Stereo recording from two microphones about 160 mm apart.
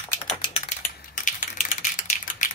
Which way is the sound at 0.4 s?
35° left (ahead or behind).